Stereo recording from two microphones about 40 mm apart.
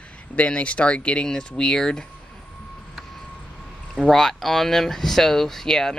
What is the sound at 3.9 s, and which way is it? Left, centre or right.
Speech, centre.